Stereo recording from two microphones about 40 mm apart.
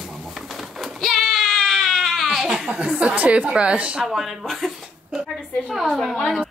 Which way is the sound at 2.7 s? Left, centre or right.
Right.